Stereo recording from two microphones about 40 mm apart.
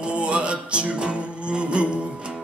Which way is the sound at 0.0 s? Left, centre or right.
Right.